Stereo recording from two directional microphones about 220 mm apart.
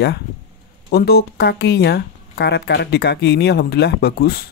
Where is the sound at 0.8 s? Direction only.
45° left (ahead or behind).